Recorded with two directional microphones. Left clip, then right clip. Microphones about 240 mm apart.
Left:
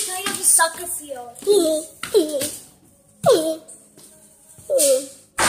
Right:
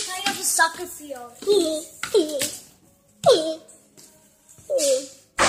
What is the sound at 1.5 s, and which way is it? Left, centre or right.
A child's voice, centre.